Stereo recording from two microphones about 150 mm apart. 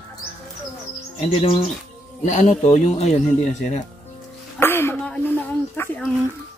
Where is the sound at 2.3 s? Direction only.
50° left (ahead or behind).